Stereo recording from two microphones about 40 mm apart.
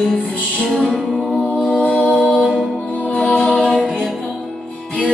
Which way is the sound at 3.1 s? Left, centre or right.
Left.